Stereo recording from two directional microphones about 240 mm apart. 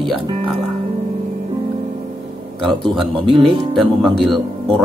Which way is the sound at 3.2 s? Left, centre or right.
Centre.